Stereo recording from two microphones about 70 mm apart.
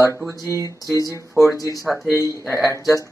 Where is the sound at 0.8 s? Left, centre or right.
Left.